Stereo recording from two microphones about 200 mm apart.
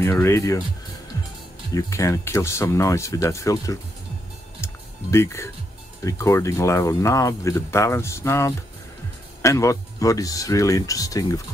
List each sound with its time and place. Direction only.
0.0 s speech: 15° left (ahead or behind)
1.7 s speech: 15° left (ahead or behind)
5.1 s speech: 15° left (ahead or behind)